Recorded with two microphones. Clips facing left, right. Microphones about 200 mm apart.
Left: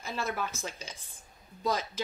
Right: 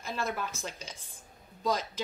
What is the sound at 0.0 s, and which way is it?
A woman's voice, centre (ahead or behind).